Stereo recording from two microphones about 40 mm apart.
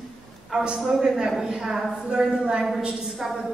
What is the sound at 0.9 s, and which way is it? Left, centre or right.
Speech, centre.